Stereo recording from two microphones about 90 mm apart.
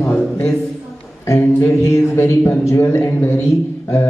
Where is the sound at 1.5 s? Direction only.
30° left (ahead or behind).